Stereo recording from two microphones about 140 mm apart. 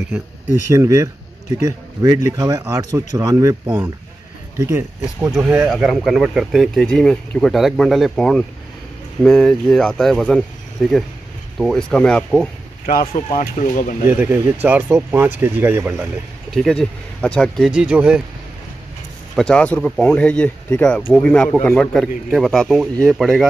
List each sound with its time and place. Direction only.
0.7 s speech: 20° right (ahead or behind)
5.7 s speech: centre (ahead or behind)
13.3 s speech: 70° left (ahead or behind)
14.0 s speech: 15° right (ahead or behind)
16.5 s speech: 5° left (ahead or behind)
17.6 s speech: 5° right (ahead or behind)
19.3 s speech: 5° left (ahead or behind)